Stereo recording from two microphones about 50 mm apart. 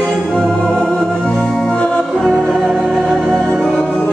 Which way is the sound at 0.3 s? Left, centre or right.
Centre.